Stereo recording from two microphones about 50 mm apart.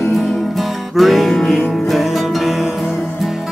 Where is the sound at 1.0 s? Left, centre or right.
Centre.